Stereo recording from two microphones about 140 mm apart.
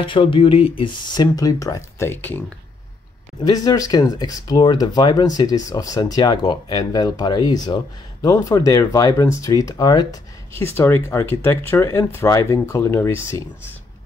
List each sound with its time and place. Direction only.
0.0 s speech: 35° left (ahead or behind); by 2.4 s 15° left (ahead or behind)
3.4 s speech: 25° left (ahead or behind)
10.6 s speech: 15° left (ahead or behind)